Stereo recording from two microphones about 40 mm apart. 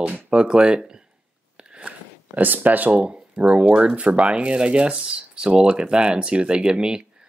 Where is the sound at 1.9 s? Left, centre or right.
Right.